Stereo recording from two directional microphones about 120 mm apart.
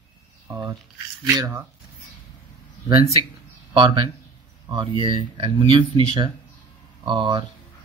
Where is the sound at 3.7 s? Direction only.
45° right (ahead or behind).